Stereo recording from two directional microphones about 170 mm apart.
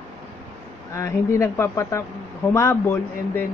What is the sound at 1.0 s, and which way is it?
Speech, 15° left (ahead or behind).